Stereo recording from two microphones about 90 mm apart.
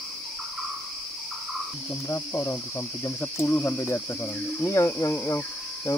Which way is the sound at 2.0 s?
30° left (ahead or behind).